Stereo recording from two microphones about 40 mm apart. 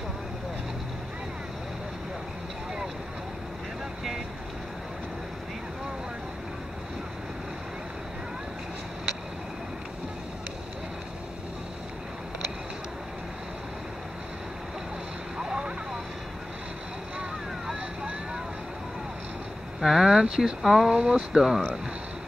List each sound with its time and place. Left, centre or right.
15.3 s vehicle: right
19.8 s speech: centre